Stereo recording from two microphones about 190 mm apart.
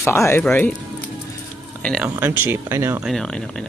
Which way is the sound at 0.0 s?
15° left (ahead or behind).